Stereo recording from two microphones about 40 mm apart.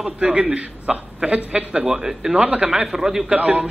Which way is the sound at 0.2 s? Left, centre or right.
Right.